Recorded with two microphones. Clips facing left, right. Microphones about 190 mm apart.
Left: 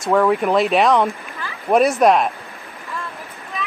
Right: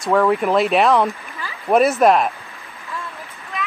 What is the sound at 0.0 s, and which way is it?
Speech, centre (ahead or behind).